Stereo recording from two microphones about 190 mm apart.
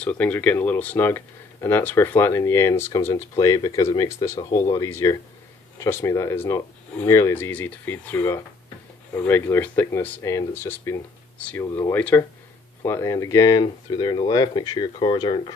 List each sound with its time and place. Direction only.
0.0 s speech: 10° left (ahead or behind); by 15.5 s 25° left (ahead or behind)